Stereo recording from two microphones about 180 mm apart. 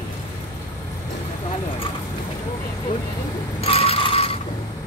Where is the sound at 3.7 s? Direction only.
35° left (ahead or behind).